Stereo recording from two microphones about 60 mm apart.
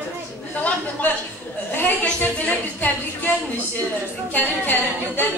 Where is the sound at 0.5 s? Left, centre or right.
Left.